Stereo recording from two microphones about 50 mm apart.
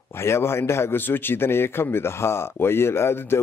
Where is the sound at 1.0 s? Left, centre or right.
Left.